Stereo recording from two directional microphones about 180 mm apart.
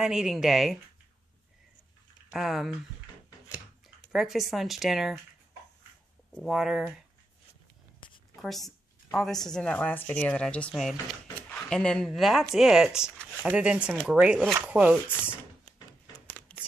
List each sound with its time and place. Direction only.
0.0 s speech: 5° right (ahead or behind)
2.3 s speech: centre (ahead or behind)
3.3 s a sound: 20° left (ahead or behind)
4.1 s speech: centre (ahead or behind)
6.3 s speech: centre (ahead or behind)
8.4 s speech: centre (ahead or behind)
16.5 s a sound: 5° left (ahead or behind)